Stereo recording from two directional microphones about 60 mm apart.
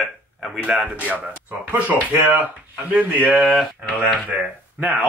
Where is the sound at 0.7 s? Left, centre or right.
Right.